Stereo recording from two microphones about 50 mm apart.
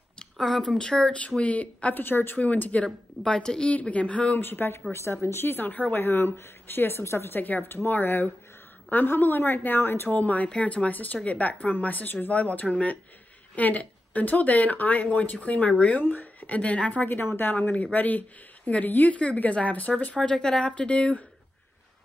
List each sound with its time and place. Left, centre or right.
0.4 s a woman's voice: centre
1.1 s speech: left
2.0 s speech: left
2.3 s speech: left
3.3 s a woman's voice: centre
4.4 s speech: left
17.1 s speech: left
17.5 s speech: left
20.2 s speech: centre